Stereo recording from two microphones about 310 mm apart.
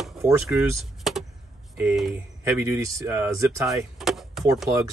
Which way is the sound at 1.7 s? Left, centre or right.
Centre.